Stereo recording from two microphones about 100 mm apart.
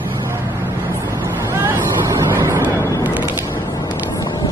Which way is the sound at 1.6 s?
30° right (ahead or behind).